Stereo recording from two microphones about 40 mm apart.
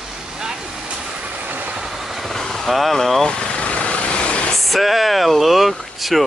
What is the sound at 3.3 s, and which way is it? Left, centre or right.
Vehicle, left.